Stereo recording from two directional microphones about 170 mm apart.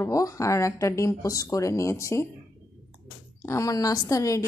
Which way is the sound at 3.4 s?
20° left (ahead or behind).